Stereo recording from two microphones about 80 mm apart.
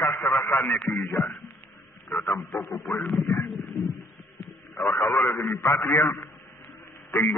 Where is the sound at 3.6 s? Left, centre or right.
Left.